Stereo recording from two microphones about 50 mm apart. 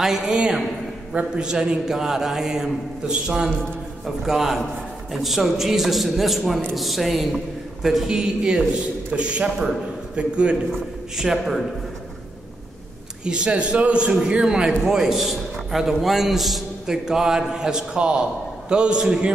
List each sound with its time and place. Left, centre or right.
0.0 s a man's voice: centre
9.1 s a man's voice: right
11.1 s a man's voice: centre
13.2 s a man's voice: centre